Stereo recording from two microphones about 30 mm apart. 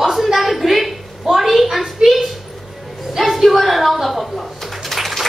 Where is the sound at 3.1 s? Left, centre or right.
Centre.